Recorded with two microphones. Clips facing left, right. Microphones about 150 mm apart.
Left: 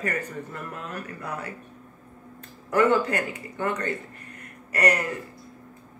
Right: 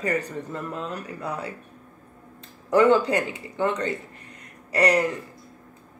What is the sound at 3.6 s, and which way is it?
Speech, 15° right (ahead or behind).